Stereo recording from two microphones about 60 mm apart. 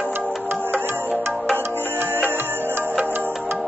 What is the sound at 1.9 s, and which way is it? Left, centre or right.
Music, right.